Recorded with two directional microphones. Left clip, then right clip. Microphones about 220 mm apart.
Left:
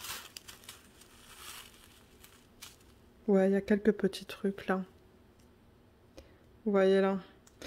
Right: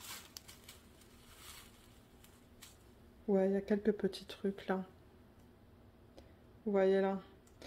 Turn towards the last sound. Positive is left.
turn(degrees=35)  # may be behind; listen again after turning